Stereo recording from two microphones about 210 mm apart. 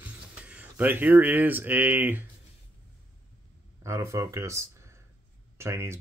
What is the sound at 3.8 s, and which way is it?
Speech, 15° right (ahead or behind).